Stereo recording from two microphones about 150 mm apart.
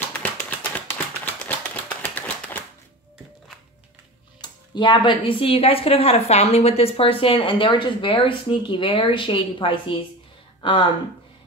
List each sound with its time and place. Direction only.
0.2 s tap: 10° left (ahead or behind)
4.4 s speech: 30° left (ahead or behind)